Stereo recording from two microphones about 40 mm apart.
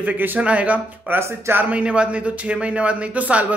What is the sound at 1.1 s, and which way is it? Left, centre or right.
Speech, right.